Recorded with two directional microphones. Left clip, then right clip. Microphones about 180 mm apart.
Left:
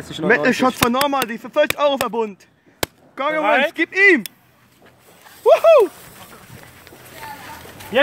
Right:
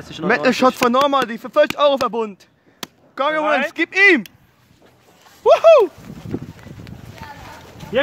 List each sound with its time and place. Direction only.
0.3 s speech: 10° right (ahead or behind)
3.4 s speech: 40° left (ahead or behind)
3.7 s speech: 15° right (ahead or behind)
5.4 s speech: 10° right (ahead or behind)
7.9 s speech: 45° left (ahead or behind)